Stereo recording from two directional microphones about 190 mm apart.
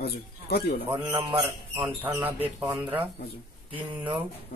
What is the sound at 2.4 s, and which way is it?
Speech, 25° right (ahead or behind).